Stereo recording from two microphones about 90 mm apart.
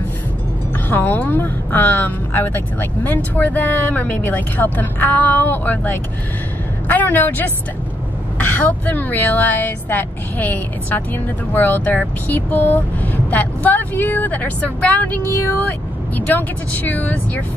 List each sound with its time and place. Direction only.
0.8 s speech: 20° left (ahead or behind)